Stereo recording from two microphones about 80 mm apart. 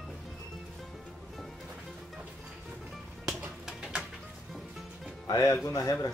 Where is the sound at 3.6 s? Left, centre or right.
Centre.